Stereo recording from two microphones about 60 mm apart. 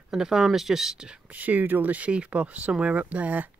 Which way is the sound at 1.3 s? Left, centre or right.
Right.